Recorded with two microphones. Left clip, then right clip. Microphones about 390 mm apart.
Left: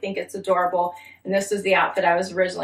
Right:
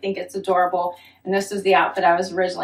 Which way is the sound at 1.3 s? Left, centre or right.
Centre.